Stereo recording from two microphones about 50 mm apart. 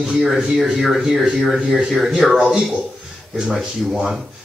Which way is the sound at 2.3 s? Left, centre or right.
Centre.